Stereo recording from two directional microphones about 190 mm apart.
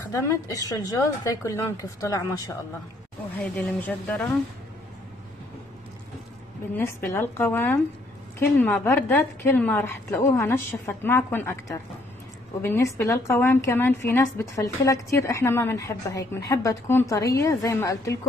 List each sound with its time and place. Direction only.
0.1 s a woman's voice: 15° left (ahead or behind)
3.5 s a woman's voice: 5° left (ahead or behind)
6.7 s a woman's voice: 10° left (ahead or behind)